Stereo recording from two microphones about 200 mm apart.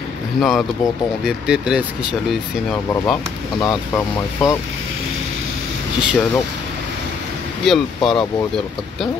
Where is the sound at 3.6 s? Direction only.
15° left (ahead or behind).